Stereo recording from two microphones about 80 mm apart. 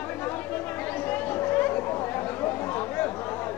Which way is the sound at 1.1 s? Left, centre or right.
Left.